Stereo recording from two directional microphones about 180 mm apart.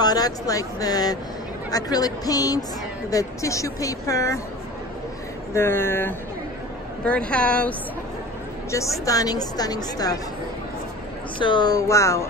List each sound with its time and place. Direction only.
0.0 s a woman's voice: 20° left (ahead or behind)
5.5 s a woman's voice: 15° left (ahead or behind)
9.0 s speech: 20° left (ahead or behind)
11.3 s speech: 25° left (ahead or behind)